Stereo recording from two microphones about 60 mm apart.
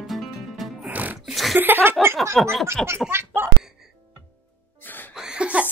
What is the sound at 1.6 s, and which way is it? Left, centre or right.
Speech, right.